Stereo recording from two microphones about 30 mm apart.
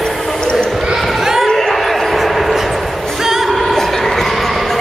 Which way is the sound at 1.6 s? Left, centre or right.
Centre.